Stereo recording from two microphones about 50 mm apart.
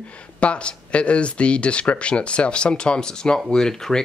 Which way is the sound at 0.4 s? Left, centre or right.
Left.